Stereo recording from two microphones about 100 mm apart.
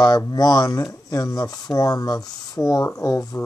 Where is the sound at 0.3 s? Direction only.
40° left (ahead or behind).